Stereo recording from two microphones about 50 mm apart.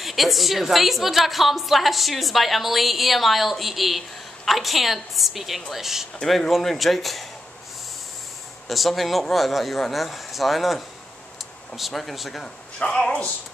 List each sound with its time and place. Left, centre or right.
0.0 s a woman's voice: centre
8.6 s a woman's voice: centre
12.7 s speech: centre